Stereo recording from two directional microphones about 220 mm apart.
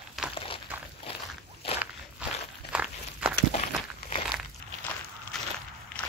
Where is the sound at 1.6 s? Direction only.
25° left (ahead or behind).